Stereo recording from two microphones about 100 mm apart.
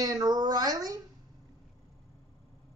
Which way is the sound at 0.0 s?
40° right (ahead or behind).